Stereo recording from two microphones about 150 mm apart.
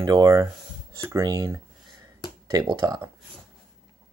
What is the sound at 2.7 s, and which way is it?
Speech, 30° right (ahead or behind).